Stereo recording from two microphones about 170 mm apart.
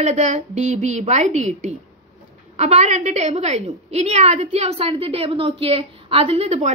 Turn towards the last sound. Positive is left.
turn(degrees=-40)  # may be behind; listen again after turning